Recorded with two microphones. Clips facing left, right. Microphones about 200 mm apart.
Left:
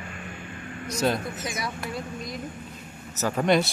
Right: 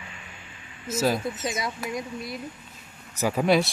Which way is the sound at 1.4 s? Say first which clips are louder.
Right 2 dB; 25° right (ahead or behind).